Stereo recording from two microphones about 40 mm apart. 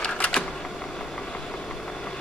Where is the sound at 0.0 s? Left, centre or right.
Left.